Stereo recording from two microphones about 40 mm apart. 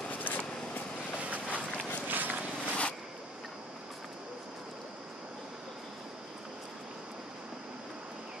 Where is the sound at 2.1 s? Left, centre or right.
Right.